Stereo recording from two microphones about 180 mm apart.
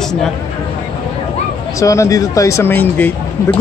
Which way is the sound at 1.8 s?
15° left (ahead or behind).